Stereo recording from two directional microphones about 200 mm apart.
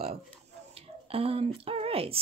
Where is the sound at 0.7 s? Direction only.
30° right (ahead or behind).